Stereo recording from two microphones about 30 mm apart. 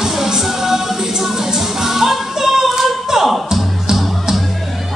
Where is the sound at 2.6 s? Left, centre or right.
Centre.